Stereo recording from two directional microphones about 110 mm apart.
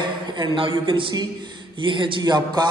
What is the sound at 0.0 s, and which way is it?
A man's voice, 45° right (ahead or behind).